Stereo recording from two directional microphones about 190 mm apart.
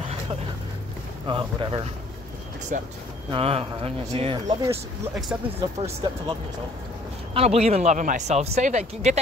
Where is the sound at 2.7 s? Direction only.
40° right (ahead or behind).